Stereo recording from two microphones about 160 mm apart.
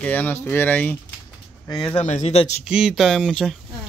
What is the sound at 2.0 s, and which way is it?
Speech, 45° left (ahead or behind).